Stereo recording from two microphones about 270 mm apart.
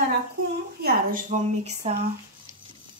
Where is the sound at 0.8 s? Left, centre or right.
Right.